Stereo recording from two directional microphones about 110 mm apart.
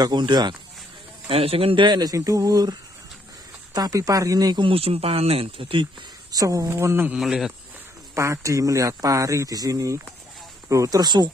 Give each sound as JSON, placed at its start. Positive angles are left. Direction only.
{"t": 0.0, "sound": "speech", "side_deg": -40}
{"t": 1.3, "sound": "speech", "side_deg": -60}
{"t": 3.7, "sound": "speech", "side_deg": -35}
{"t": 4.6, "sound": "speech", "side_deg": -60}
{"t": 6.3, "sound": "speech", "side_deg": -30}
{"t": 7.2, "sound": "speech", "side_deg": -5}
{"t": 8.1, "sound": "speech", "side_deg": -25}